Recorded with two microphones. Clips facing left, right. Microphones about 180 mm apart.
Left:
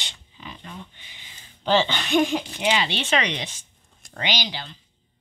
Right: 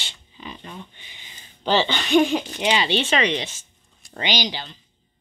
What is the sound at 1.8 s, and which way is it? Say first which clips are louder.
Speech: right 3 dB; 10° left (ahead or behind).